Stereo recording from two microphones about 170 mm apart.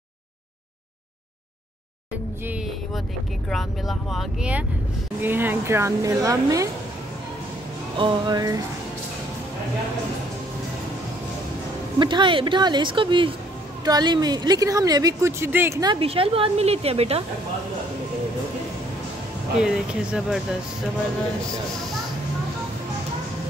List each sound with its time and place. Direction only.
2.4 s a sound: 10° right (ahead or behind)
3.4 s speech: centre (ahead or behind); by 6.7 s 20° right (ahead or behind)
8.0 s speech: 25° right (ahead or behind)
12.0 s speech: 30° right (ahead or behind)
15.9 s speech: 35° right (ahead or behind)
19.6 s speech: 5° right (ahead or behind)